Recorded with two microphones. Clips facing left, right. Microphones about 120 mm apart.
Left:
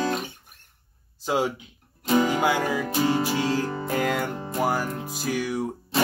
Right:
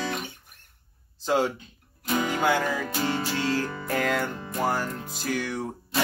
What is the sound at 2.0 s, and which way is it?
Music, 25° left (ahead or behind).